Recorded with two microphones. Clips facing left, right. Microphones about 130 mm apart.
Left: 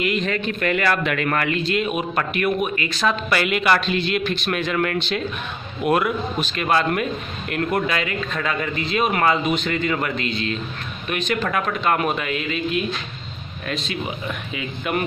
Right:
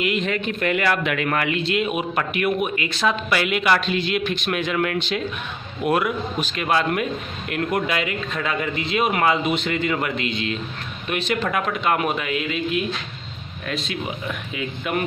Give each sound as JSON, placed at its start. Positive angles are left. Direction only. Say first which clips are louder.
{"t": 0.0, "sound": "a man's voice", "louder": "even", "side_deg": -20}
{"t": 1.6, "sound": "a man's voice", "louder": "even", "side_deg": -20}
{"t": 3.1, "sound": "a man's voice", "louder": "left 1 dB", "side_deg": -5}
{"t": 11.4, "sound": "a man's voice", "louder": "left 1 dB", "side_deg": -15}
{"t": 14.5, "sound": "speech", "louder": "even", "side_deg": 0}